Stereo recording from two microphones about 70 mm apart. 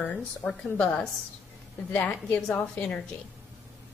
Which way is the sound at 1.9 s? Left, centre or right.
Left.